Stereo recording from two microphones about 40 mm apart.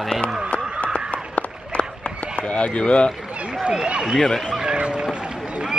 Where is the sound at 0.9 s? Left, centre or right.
Left.